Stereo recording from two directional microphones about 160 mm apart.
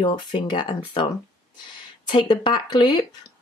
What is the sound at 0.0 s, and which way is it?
Speech, 30° left (ahead or behind).